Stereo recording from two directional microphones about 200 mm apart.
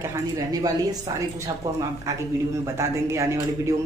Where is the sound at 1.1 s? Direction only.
20° right (ahead or behind).